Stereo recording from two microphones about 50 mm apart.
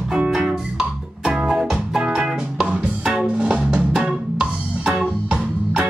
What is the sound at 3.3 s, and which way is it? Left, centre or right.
Music, right.